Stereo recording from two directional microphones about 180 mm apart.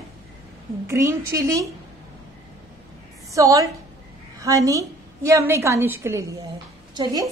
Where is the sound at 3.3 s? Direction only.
20° right (ahead or behind).